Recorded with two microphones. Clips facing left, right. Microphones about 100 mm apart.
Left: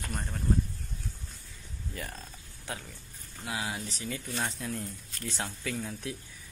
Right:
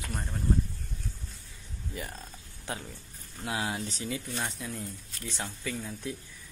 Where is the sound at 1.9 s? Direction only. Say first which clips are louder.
Right 1 dB; 15° right (ahead or behind).